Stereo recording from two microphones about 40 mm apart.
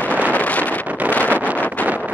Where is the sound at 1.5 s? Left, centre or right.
Left.